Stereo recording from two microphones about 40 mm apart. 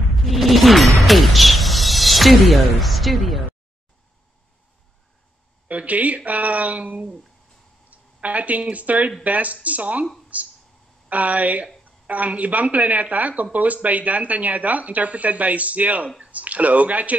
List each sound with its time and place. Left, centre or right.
0.3 s speech: centre
5.7 s speech: right